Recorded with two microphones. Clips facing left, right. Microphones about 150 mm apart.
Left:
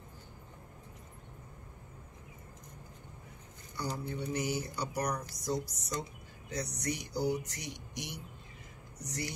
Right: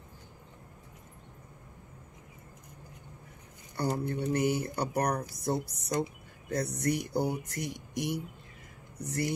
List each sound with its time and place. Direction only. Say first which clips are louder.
3.7 s speech: right 6 dB; 55° right (ahead or behind)